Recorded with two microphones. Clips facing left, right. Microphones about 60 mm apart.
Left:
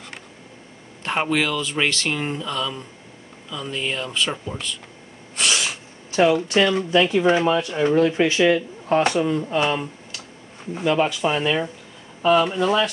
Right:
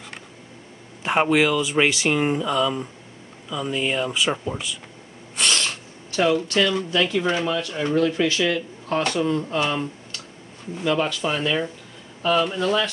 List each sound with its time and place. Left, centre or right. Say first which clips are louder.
1.0 s speech: right 3 dB; centre
5.3 s sneeze: even; centre
6.1 s speech: left 3 dB; centre